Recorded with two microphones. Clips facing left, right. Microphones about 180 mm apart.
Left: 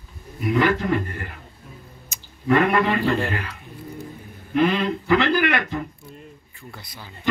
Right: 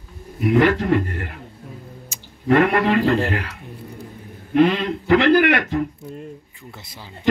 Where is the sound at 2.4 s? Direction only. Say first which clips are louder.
Right 2 dB; 70° right (ahead or behind).